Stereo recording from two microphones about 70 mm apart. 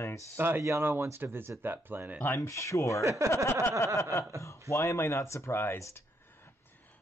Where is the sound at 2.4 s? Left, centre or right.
Left.